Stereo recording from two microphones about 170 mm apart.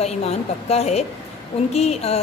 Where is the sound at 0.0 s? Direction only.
40° left (ahead or behind).